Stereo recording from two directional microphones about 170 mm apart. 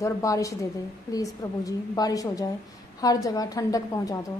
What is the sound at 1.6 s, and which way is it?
A woman's voice, 20° left (ahead or behind).